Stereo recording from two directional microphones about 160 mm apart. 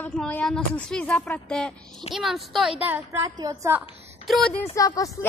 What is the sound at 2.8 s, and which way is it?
Speech, 15° right (ahead or behind).